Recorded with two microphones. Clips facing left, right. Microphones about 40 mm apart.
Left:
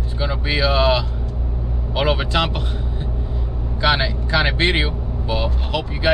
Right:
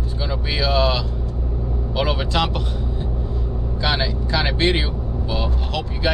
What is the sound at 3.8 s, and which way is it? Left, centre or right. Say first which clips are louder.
Speech: left 4 dB; left.